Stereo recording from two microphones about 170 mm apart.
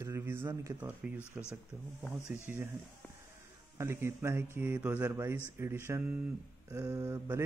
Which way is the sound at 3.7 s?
15° right (ahead or behind).